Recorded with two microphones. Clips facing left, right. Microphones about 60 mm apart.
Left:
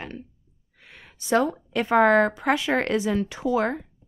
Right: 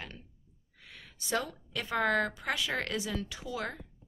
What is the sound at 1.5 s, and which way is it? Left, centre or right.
Speech, left.